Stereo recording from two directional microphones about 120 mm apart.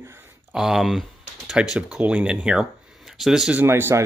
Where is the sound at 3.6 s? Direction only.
20° right (ahead or behind).